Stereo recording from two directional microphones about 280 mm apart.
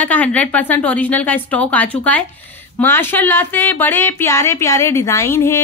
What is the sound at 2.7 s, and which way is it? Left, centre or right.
Speech, centre.